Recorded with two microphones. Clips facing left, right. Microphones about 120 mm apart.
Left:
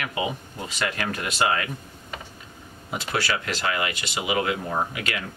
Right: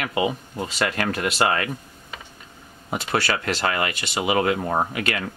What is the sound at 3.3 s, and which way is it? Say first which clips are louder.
Speech: right 3 dB; 50° right (ahead or behind).